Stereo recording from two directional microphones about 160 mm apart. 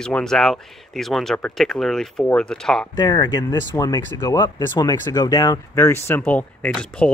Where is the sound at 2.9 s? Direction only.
25° left (ahead or behind); by 7.1 s 5° left (ahead or behind).